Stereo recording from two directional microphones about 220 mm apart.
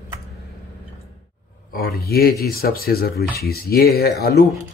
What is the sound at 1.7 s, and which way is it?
Speech, 45° left (ahead or behind).